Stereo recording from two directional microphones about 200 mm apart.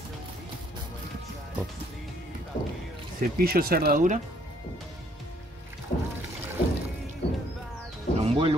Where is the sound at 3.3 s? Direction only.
50° right (ahead or behind).